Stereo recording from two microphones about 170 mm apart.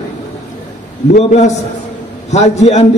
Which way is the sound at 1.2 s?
40° left (ahead or behind).